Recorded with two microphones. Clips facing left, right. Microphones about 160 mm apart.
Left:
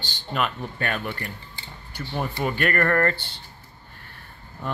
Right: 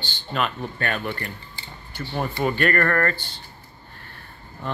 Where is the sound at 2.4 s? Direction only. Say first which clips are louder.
Right 2 dB; 5° left (ahead or behind).